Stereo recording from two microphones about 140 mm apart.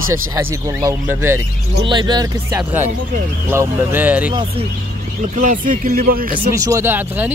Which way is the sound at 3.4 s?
15° right (ahead or behind).